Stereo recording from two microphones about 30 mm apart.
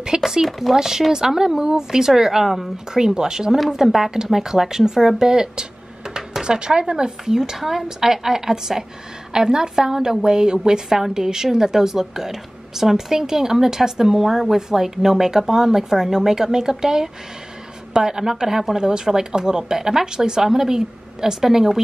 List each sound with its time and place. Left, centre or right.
0.2 s a woman's voice: centre
3.5 s a woman's voice: centre; by 7.3 s right
7.5 s a woman's voice: centre